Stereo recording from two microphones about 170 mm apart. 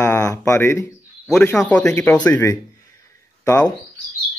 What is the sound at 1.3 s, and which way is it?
Speech, 5° left (ahead or behind).